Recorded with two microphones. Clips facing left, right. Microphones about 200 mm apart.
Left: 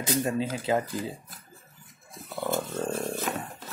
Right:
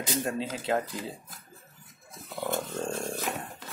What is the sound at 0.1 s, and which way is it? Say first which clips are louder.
Speech: left 4 dB; centre (ahead or behind).